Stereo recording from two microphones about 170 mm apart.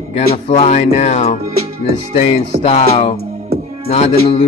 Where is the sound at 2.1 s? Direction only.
40° left (ahead or behind).